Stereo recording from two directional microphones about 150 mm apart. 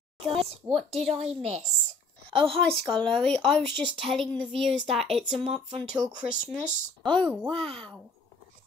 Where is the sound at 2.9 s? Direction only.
5° left (ahead or behind).